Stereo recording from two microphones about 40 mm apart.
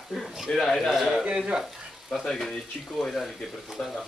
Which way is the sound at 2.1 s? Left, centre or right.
Centre.